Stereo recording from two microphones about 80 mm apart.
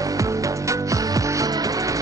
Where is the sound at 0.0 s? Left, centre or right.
Right.